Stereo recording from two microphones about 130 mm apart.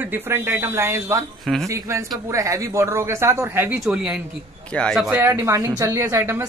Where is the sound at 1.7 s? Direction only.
25° right (ahead or behind).